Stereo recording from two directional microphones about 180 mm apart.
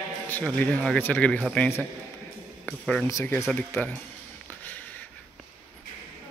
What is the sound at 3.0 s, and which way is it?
Speech, 15° left (ahead or behind).